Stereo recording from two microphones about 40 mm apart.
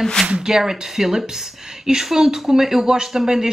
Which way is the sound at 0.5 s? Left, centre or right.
Centre.